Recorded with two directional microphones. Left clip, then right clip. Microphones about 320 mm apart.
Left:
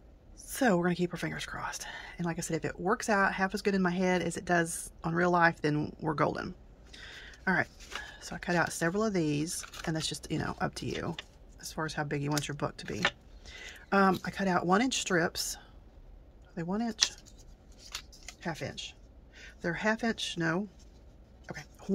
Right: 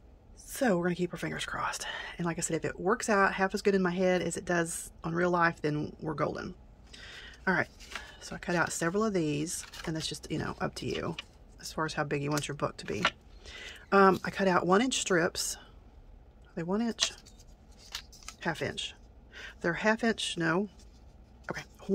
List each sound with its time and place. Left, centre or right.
0.5 s speech: centre
18.4 s speech: centre
21.5 s a sound: centre